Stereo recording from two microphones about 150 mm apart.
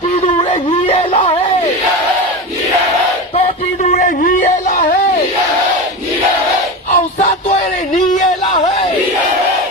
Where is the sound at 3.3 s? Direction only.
55° left (ahead or behind); by 5.0 s 85° left.